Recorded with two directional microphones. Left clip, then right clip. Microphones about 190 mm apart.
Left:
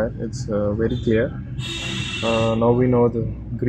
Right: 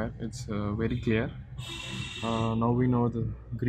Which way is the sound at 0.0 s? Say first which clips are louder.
Left 12 dB; 90° right.